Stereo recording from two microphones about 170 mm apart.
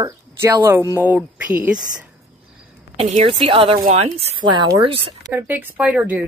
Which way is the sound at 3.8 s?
40° right (ahead or behind).